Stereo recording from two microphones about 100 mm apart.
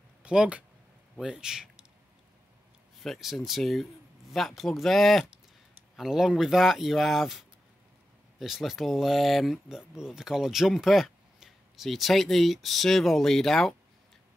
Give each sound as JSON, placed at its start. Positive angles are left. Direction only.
{"t": 0.2, "sound": "a man's voice", "side_deg": -10}
{"t": 3.0, "sound": "speech", "side_deg": 0}